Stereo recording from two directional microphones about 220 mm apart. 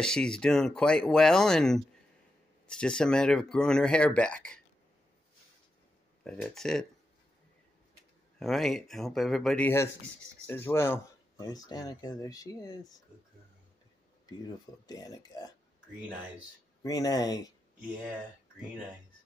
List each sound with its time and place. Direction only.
0.0 s speech: 5° left (ahead or behind)
6.2 s speech: 5° left (ahead or behind)
8.4 s speech: centre (ahead or behind); by 13.0 s 15° left (ahead or behind)
14.4 s speech: 15° left (ahead or behind)
16.8 s speech: 15° left (ahead or behind)